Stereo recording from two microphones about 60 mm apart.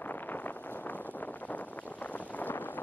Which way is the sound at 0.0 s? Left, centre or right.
Left.